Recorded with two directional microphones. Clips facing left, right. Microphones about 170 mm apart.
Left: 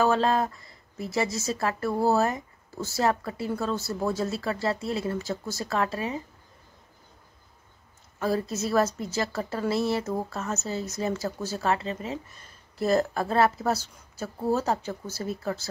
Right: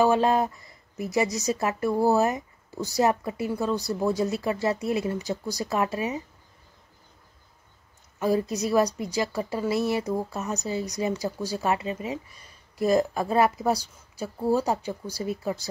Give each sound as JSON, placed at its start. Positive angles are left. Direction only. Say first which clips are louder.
{"t": 0.0, "sound": "speech", "louder": "right 2 dB", "side_deg": -15}
{"t": 8.2, "sound": "speech", "louder": "right 3 dB", "side_deg": -15}